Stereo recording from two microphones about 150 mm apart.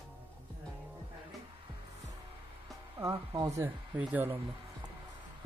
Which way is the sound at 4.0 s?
10° right (ahead or behind).